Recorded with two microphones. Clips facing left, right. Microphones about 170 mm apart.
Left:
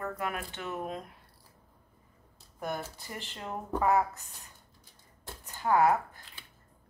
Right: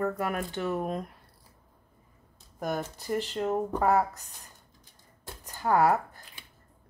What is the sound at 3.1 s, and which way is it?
Speech, 40° right (ahead or behind).